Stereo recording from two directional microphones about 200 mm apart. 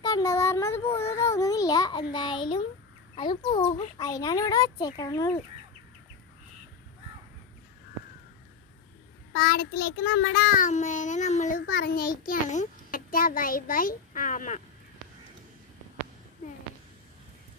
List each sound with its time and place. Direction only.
0.0 s a child's voice: 15° left (ahead or behind)
4.1 s speech: 20° left (ahead or behind)
9.3 s child singing: 50° left (ahead or behind)